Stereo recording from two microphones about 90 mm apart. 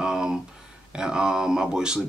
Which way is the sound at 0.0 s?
10° right (ahead or behind).